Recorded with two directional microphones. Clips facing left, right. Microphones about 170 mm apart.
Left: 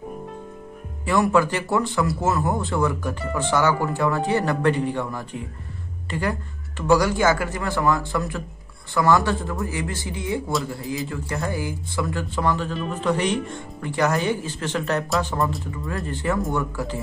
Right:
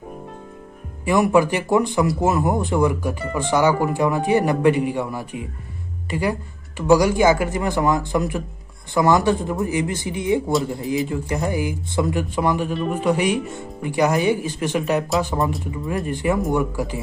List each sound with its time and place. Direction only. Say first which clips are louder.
1.0 s speech: right 3 dB; 15° right (ahead or behind)